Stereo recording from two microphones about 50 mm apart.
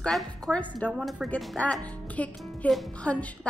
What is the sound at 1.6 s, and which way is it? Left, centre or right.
Music, left.